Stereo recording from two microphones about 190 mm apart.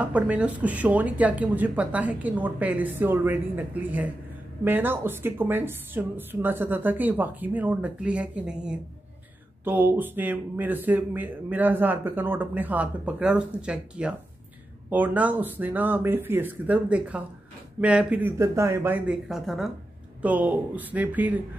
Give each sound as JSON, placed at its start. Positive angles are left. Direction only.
{"t": 0.0, "sound": "speech", "side_deg": -5}